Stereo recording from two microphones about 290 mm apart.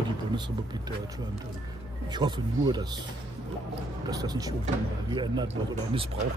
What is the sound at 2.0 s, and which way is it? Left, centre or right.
Speech, centre.